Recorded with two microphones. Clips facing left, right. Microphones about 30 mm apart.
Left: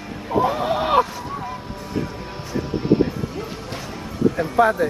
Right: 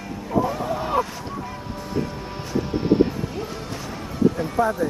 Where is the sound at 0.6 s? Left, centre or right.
Left.